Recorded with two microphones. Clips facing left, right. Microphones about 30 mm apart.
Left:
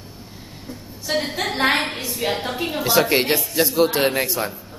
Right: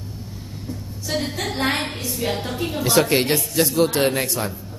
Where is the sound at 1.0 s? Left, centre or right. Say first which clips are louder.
Left 2 dB; centre.